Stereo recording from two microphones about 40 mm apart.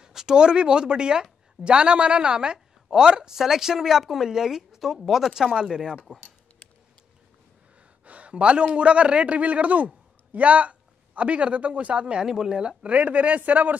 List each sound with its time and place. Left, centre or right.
0.0 s a woman's voice: centre
5.2 s speech: centre
8.0 s a man's voice: right; by 12.6 s centre
12.6 s speech: right